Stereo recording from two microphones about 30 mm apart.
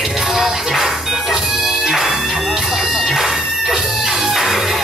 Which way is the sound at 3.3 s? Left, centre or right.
Centre.